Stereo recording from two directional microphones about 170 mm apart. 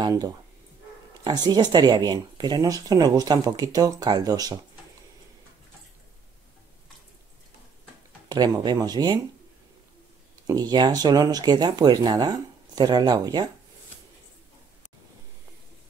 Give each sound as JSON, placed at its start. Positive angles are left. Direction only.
{"t": 0.0, "sound": "speech", "side_deg": -25}
{"t": 8.3, "sound": "speech", "side_deg": -25}
{"t": 10.4, "sound": "speech", "side_deg": -20}